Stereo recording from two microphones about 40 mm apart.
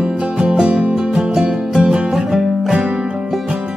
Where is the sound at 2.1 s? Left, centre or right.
Centre.